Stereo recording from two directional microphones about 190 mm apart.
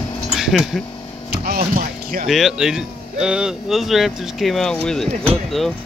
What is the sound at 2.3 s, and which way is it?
Speech, centre (ahead or behind).